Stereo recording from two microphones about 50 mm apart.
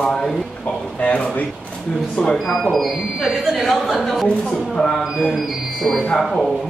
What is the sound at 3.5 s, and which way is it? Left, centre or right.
Speech, centre.